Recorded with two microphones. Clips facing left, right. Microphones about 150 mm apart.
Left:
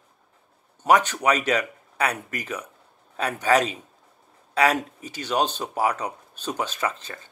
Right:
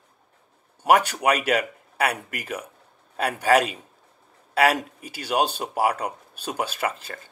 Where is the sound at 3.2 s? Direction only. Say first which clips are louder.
Right 1 dB; 10° right (ahead or behind).